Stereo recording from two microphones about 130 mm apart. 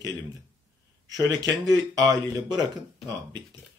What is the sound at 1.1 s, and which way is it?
Speech, 30° right (ahead or behind).